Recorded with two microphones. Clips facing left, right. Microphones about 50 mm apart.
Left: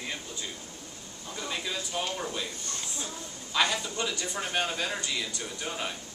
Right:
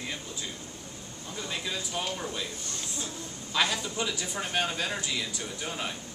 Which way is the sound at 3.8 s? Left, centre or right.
Centre.